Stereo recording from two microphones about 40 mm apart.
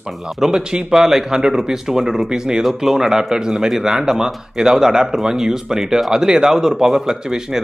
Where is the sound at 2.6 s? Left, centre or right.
Centre.